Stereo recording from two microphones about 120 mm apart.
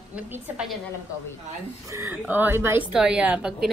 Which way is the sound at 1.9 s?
20° right (ahead or behind).